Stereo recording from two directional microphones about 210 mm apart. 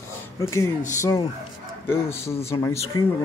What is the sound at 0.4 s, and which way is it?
Speech, 15° left (ahead or behind).